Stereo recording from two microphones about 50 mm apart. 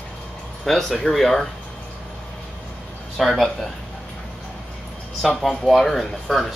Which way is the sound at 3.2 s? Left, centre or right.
Centre.